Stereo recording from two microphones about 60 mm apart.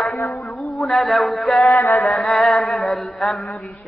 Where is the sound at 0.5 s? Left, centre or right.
Centre.